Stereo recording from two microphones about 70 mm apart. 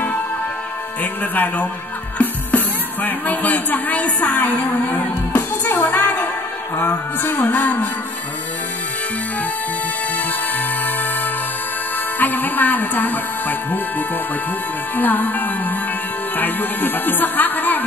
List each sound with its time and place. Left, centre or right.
1.2 s speech: left
12.2 s speech: left